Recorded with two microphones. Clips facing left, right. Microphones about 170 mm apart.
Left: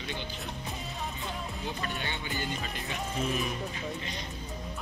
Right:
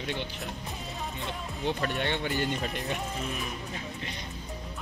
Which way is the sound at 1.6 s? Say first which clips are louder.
Right 9 dB; 70° right (ahead or behind).